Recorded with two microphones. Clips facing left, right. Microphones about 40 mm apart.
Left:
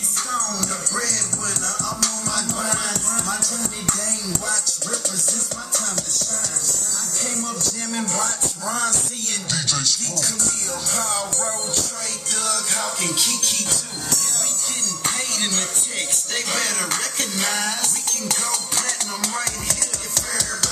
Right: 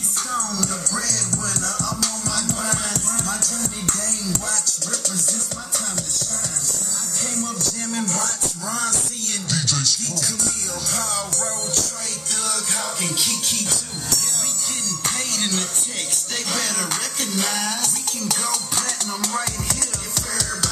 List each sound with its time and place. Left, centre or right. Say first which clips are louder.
1.0 s music: even; left
8.0 s music: left 1 dB; left
8.6 s a sound: left 2 dB; centre
10.9 s music: left 1 dB; centre
11.3 s music: left 1 dB; left
13.0 s music: left 1 dB; centre
14.8 s music: left 1 dB; centre